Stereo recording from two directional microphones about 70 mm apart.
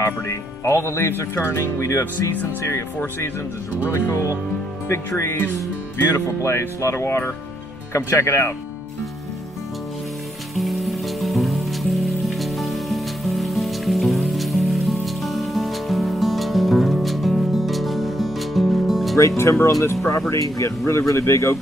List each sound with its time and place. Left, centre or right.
0.0 s speech: left
3.9 s speech: left
10.5 s music: centre
19.1 s speech: left